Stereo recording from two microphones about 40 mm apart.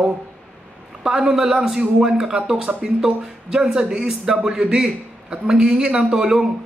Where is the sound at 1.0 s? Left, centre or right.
Centre.